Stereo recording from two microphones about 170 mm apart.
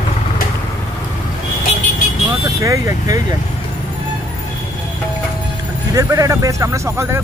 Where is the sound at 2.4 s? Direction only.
20° right (ahead or behind).